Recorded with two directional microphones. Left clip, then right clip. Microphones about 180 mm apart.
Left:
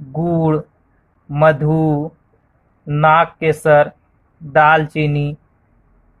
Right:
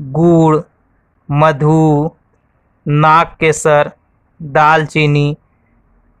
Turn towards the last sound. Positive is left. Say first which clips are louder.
# right 7 dB
turn(degrees=-40)  # may be behind; listen again after turning